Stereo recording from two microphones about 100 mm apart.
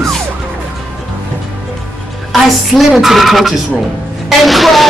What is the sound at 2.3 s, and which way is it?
A woman's voice, centre (ahead or behind).